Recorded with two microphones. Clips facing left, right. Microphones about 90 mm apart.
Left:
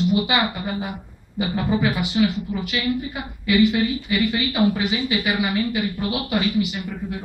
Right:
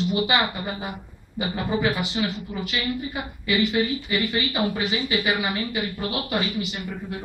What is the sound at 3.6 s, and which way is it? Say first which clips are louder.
Speech: left 5 dB; 15° left (ahead or behind).